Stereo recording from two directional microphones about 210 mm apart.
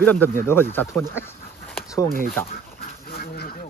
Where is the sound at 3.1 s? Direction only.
50° left (ahead or behind).